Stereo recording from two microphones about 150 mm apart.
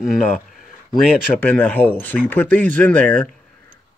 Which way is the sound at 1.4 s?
10° left (ahead or behind).